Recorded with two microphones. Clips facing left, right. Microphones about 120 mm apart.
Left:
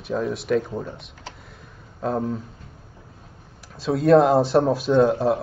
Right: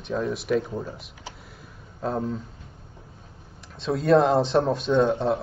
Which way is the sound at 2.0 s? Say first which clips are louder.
Left 3 dB; centre (ahead or behind).